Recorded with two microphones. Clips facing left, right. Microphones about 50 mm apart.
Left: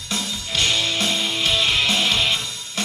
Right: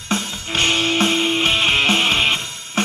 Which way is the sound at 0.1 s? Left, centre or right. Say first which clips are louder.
Right 4 dB; right.